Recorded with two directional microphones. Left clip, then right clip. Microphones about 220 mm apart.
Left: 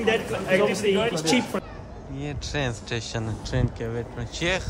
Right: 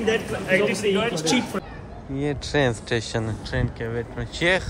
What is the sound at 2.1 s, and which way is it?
Speech, 15° left (ahead or behind).